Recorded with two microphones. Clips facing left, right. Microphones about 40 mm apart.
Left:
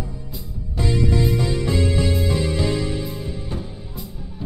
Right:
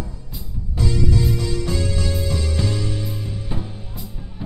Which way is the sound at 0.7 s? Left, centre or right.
Centre.